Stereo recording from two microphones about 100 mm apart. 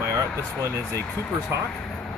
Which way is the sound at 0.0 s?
30° right (ahead or behind).